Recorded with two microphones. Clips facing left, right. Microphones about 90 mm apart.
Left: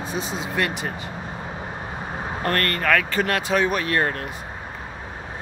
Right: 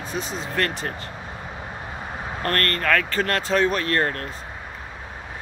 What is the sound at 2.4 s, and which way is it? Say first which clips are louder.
Speech: left 1 dB; 15° left (ahead or behind).